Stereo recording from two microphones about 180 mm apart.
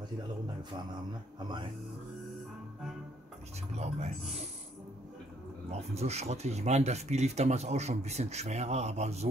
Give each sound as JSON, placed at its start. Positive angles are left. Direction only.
{"t": 3.7, "sound": "speech", "side_deg": -35}
{"t": 5.7, "sound": "speech", "side_deg": -35}